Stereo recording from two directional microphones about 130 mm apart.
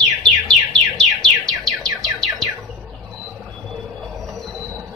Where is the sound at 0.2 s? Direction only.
5° left (ahead or behind).